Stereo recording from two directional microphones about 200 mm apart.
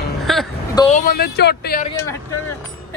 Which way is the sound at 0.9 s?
50° left (ahead or behind).